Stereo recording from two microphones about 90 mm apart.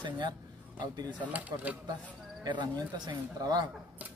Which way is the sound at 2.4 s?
55° right (ahead or behind).